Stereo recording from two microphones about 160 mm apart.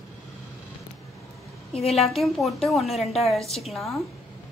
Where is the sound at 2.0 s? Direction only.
Centre (ahead or behind).